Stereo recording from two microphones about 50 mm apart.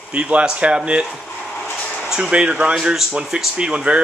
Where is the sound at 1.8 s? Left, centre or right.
Left.